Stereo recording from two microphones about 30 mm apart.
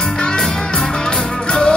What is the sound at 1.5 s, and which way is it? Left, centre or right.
Music, left.